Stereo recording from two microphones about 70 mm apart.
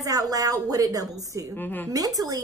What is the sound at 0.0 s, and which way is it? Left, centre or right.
A woman's voice, right.